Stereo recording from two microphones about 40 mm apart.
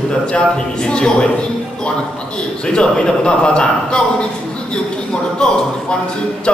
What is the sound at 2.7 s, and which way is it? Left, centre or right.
A man's voice, left.